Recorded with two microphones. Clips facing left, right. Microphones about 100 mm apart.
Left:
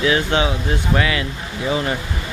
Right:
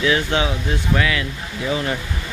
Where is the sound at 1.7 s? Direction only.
20° left (ahead or behind).